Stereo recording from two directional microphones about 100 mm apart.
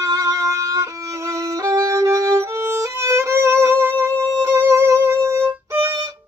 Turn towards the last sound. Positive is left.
turn(degrees=-30)  # may be behind; listen again after turning